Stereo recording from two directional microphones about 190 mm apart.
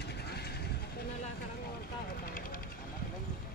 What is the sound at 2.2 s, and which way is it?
Helicopter, 50° left (ahead or behind).